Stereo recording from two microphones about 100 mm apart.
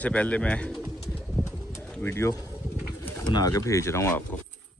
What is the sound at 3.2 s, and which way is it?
Speech, 40° left (ahead or behind).